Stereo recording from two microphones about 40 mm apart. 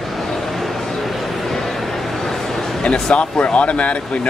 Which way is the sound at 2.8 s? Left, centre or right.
Left.